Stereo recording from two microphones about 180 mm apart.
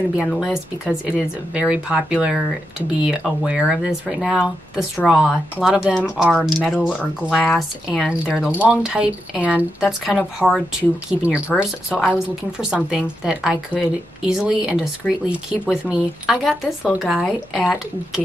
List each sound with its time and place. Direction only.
0.2 s speech: centre (ahead or behind)
12.5 s speech: 5° right (ahead or behind)